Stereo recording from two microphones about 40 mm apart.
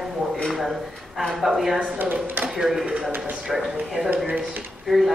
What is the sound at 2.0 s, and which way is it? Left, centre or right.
Speech, right.